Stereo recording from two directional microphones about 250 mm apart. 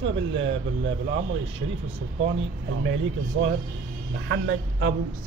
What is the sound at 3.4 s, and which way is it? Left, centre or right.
Speech, right.